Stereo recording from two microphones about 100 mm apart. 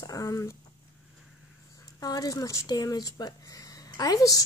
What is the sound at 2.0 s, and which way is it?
Speech, 40° left (ahead or behind).